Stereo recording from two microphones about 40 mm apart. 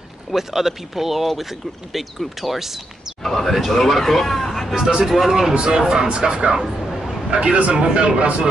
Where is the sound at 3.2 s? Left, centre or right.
Centre.